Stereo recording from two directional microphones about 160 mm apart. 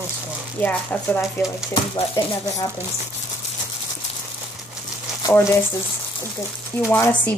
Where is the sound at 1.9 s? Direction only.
25° left (ahead or behind).